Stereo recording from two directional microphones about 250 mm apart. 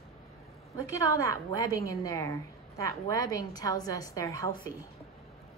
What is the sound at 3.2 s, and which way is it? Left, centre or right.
Speech, right.